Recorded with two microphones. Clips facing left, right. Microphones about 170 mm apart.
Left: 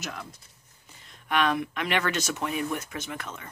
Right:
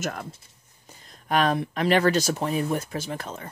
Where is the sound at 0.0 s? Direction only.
50° right (ahead or behind).